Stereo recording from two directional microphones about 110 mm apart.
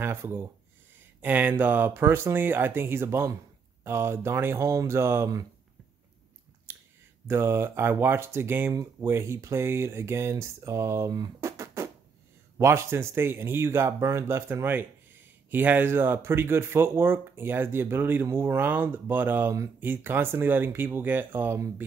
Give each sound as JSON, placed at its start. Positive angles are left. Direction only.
{"t": 0.0, "sound": "speech", "side_deg": -25}
{"t": 6.7, "sound": "a sound", "side_deg": -20}
{"t": 7.2, "sound": "speech", "side_deg": -20}